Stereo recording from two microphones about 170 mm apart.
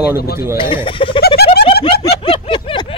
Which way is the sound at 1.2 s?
65° left (ahead or behind).